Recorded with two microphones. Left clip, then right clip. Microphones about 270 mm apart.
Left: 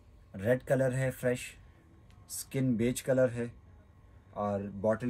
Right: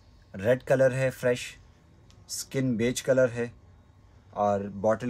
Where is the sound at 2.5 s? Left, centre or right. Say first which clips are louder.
Right 4 dB; right.